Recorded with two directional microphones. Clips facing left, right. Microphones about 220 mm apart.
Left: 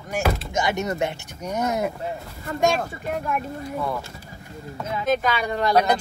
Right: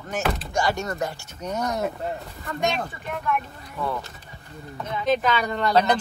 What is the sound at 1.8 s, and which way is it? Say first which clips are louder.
Speech: left 1 dB; centre (ahead or behind).